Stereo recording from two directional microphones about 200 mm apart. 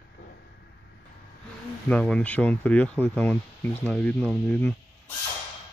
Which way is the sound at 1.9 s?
5° left (ahead or behind).